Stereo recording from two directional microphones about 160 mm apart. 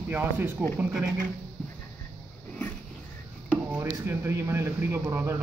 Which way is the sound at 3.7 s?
15° right (ahead or behind).